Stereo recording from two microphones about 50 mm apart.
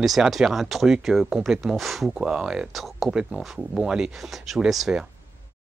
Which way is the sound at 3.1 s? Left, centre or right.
Centre.